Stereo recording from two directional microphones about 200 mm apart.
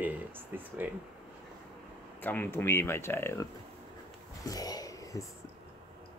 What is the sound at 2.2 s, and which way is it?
Speech, 10° left (ahead or behind).